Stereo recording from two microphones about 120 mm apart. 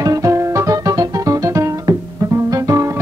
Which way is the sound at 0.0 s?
30° right (ahead or behind).